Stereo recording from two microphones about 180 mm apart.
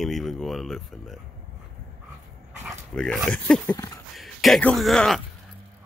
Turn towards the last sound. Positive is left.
turn(degrees=0)  # may be behind; listen again after turning